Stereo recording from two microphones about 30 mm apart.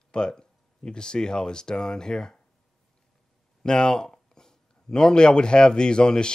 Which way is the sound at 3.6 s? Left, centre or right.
Left.